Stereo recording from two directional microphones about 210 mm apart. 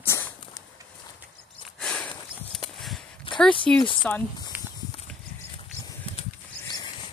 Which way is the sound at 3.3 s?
25° left (ahead or behind).